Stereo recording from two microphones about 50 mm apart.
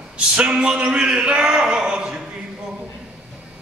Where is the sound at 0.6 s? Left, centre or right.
Right.